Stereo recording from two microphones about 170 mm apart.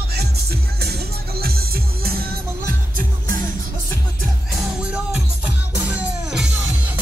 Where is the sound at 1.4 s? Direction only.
65° right (ahead or behind).